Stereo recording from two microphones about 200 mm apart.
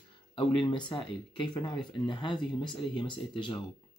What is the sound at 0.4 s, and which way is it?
Speech, 20° left (ahead or behind).